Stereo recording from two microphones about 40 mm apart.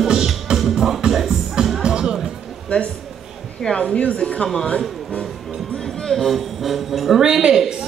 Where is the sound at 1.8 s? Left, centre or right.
Centre.